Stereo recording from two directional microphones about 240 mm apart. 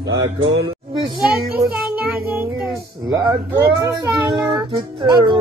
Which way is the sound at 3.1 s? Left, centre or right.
Centre.